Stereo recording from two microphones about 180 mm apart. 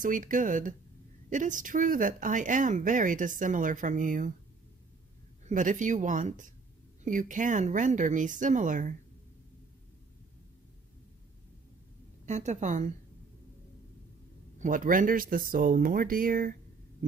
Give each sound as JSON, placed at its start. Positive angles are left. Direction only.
{"t": 0.0, "sound": "speech", "side_deg": -45}
{"t": 5.5, "sound": "speech", "side_deg": -45}
{"t": 12.3, "sound": "a woman's voice", "side_deg": -40}
{"t": 14.6, "sound": "speech", "side_deg": -45}